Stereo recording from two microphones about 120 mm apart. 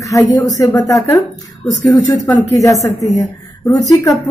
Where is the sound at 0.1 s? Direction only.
30° left (ahead or behind).